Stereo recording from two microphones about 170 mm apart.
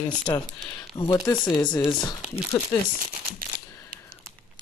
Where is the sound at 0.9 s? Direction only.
25° left (ahead or behind).